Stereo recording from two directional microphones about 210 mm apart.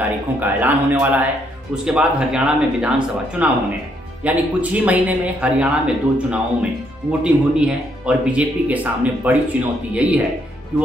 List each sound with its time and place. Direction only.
0.4 s speech: 10° right (ahead or behind)